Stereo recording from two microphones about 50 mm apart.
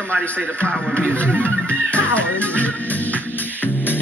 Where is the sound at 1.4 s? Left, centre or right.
Left.